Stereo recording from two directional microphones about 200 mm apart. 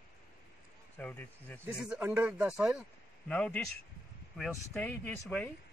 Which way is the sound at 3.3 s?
5° left (ahead or behind).